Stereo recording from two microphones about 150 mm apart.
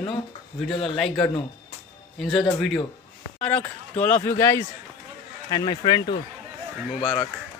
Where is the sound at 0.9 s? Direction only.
5° left (ahead or behind); by 7.2 s 25° left (ahead or behind).